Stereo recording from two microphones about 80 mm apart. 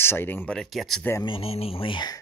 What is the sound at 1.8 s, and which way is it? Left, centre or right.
Speech, left.